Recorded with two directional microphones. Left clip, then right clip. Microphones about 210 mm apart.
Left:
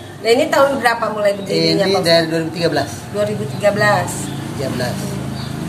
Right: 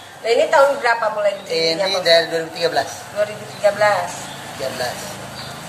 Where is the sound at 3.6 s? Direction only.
50° left (ahead or behind).